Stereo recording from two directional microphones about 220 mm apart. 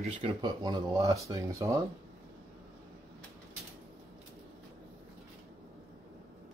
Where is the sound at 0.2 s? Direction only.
20° right (ahead or behind).